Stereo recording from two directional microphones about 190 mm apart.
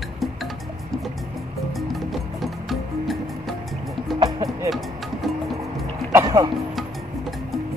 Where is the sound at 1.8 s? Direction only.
Centre (ahead or behind).